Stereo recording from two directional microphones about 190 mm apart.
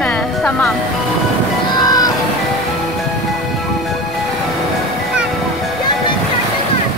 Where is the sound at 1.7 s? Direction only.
20° left (ahead or behind).